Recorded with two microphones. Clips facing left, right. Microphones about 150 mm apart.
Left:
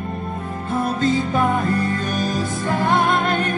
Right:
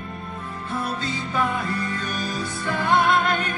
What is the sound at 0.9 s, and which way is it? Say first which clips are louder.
Music: left 9 dB; 45° left (ahead or behind).